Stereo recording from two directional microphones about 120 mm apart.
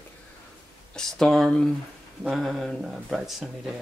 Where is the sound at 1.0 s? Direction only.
5° left (ahead or behind).